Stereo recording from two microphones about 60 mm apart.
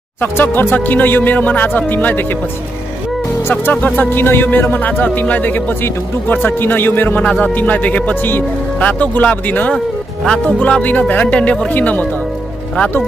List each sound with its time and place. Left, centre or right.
0.2 s speech: left
3.8 s speech: left
7.2 s speech: centre; by 8.8 s left
8.8 s speech: left
10.2 s speech: centre
10.8 s speech: left
11.7 s speech: left